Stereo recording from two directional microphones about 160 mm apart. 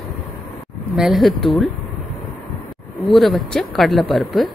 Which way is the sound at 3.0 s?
Centre (ahead or behind).